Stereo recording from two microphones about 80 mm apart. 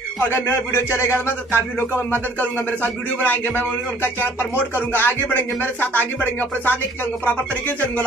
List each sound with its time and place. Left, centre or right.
0.3 s speech: left